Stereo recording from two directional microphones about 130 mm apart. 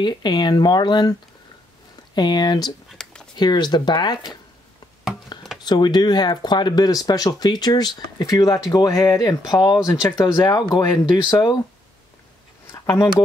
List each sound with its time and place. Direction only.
0.0 s speech: 35° left (ahead or behind)
2.1 s speech: 35° left (ahead or behind)
2.9 s a sound: 5° left (ahead or behind)
3.3 s speech: 35° left (ahead or behind)
5.3 s a sound: 35° left (ahead or behind)
5.7 s speech: 35° left (ahead or behind)
12.7 s speech: 20° left (ahead or behind)